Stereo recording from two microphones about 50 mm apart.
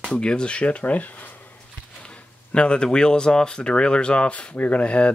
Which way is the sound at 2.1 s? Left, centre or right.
Left.